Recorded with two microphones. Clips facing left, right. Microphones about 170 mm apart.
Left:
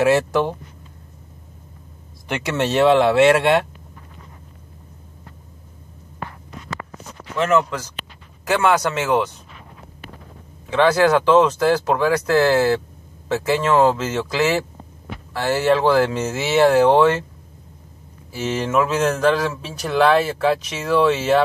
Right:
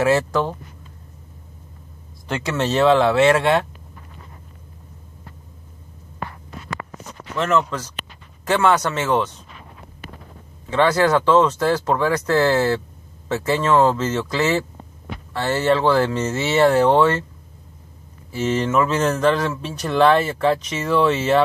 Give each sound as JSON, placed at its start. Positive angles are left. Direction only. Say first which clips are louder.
{"t": 0.0, "sound": "speech", "louder": "left 2 dB", "side_deg": 15}
{"t": 2.2, "sound": "speech", "louder": "left 1 dB", "side_deg": 15}
{"t": 7.3, "sound": "speech", "louder": "left 2 dB", "side_deg": 10}
{"t": 11.1, "sound": "speech", "louder": "left 1 dB", "side_deg": 10}
{"t": 15.3, "sound": "speech", "louder": "left 1 dB", "side_deg": 10}
{"t": 18.3, "sound": "speech", "louder": "right 1 dB", "side_deg": 5}